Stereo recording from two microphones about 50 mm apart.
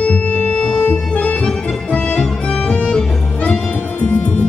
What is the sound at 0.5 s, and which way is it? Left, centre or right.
Music, centre.